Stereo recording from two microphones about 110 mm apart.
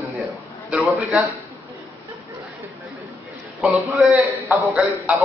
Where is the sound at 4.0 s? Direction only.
Centre (ahead or behind).